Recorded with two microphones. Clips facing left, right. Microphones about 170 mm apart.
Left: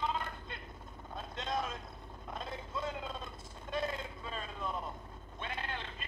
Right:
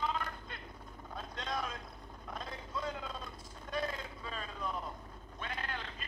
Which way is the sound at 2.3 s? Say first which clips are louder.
Left 1 dB; 25° left (ahead or behind).